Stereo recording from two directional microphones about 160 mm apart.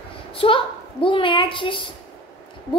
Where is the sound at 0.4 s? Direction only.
30° left (ahead or behind).